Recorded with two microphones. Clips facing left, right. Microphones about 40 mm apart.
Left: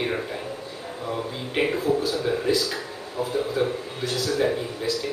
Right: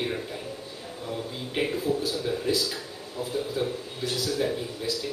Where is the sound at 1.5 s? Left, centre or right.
Left.